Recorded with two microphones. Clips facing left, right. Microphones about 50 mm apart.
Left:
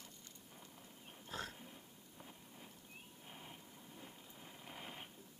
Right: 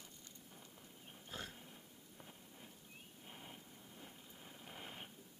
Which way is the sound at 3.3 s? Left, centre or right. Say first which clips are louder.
Even; centre.